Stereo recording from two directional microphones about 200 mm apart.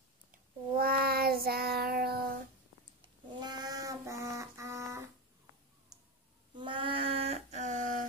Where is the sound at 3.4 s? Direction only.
20° right (ahead or behind).